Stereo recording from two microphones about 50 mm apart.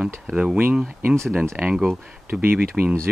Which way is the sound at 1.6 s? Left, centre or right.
Right.